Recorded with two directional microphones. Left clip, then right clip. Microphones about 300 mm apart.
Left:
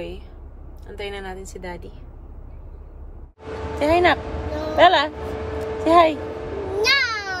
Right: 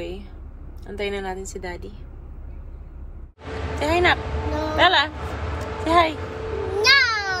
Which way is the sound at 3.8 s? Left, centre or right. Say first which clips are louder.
Left 2 dB; left.